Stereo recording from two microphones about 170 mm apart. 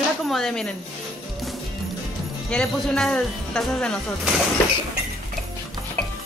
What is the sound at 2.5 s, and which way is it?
A man's voice, 5° left (ahead or behind).